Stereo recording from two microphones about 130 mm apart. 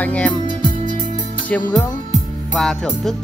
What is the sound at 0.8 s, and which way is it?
Music, 80° right.